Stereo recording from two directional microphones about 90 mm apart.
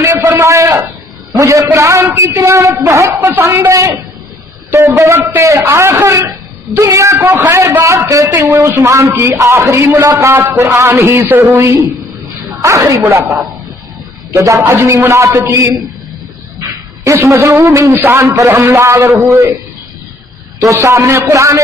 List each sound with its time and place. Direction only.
0.0 s a sound: 20° right (ahead or behind)
0.4 s a man's voice: 35° right (ahead or behind)
14.3 s a woman's voice: 35° right (ahead or behind)
17.0 s a man's voice: 35° right (ahead or behind)
20.6 s a man's voice: 30° right (ahead or behind)